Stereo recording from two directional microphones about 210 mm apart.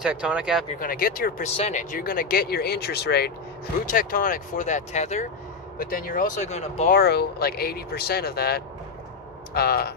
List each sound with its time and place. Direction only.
0.0 s speech: 5° right (ahead or behind)
0.7 s speech: 40° left (ahead or behind)
7.0 s speech: 50° left (ahead or behind)